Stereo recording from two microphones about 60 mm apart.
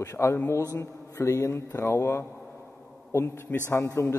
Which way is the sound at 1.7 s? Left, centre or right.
Left.